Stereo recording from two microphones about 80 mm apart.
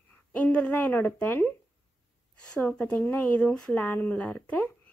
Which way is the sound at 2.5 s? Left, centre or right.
Centre.